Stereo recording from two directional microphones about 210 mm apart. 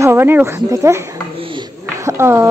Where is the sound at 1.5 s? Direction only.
15° right (ahead or behind).